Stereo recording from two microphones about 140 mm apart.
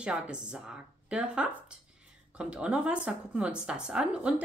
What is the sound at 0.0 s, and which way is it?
A woman's voice, 5° right (ahead or behind).